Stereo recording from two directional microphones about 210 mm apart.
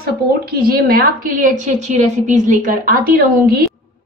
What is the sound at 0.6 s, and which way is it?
A woman's voice, 45° right (ahead or behind).